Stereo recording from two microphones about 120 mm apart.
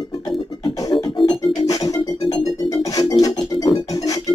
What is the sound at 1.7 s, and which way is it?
Music, 30° left (ahead or behind).